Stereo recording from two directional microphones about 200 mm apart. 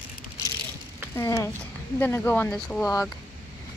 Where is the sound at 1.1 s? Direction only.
15° left (ahead or behind).